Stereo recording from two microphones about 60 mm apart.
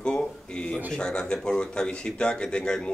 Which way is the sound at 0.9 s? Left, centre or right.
Centre.